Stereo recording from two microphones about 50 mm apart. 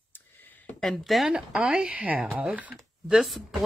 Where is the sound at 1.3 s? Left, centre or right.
Centre.